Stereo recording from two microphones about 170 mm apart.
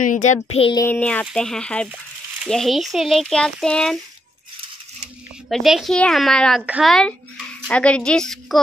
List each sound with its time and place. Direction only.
0.0 s child singing: 50° left (ahead or behind)
0.7 s a child's voice: 10° left (ahead or behind)
5.5 s speech: centre (ahead or behind)
6.6 s a woman's voice: 10° right (ahead or behind)
6.9 s speech: 5° left (ahead or behind)